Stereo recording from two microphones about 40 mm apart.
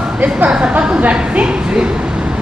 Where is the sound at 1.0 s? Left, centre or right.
Right.